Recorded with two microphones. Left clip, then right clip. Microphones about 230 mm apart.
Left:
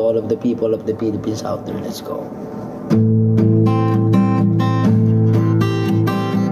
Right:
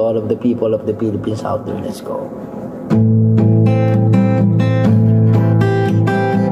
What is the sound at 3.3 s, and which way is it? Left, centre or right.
Music, centre.